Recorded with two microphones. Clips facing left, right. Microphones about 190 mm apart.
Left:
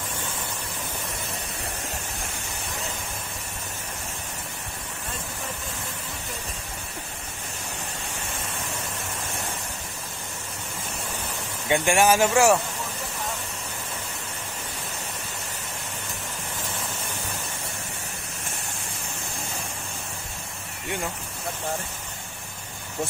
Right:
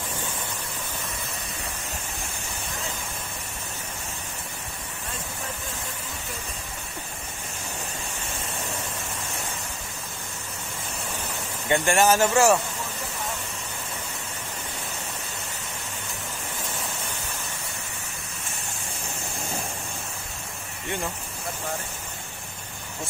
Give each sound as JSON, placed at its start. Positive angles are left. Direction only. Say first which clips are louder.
{"t": 11.7, "sound": "speech", "louder": "even", "side_deg": 10}